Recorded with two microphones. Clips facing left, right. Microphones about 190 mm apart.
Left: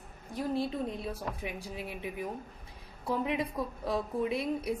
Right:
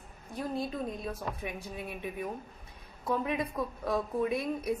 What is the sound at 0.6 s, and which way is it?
A woman's voice, 25° left (ahead or behind).